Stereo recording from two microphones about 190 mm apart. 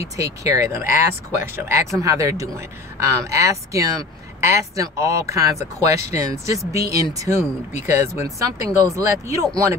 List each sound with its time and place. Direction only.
0.2 s speech: 15° right (ahead or behind)